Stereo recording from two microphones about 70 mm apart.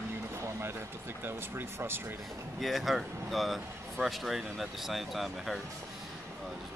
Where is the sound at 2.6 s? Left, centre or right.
Centre.